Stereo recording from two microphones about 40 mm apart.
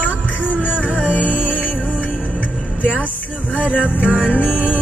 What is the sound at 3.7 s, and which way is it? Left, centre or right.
Music, left.